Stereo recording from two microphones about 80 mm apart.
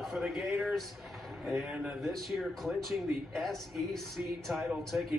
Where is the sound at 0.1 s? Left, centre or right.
Centre.